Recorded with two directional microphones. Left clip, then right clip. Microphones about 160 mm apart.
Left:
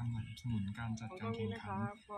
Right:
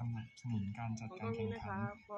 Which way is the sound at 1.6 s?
55° left (ahead or behind).